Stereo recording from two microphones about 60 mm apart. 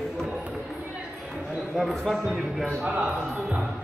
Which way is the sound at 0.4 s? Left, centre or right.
Centre.